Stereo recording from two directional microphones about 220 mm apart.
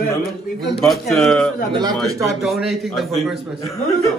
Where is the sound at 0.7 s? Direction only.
Centre (ahead or behind).